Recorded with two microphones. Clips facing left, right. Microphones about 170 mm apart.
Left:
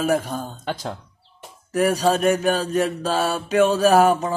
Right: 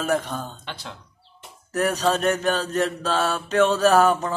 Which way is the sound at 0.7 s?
40° left (ahead or behind).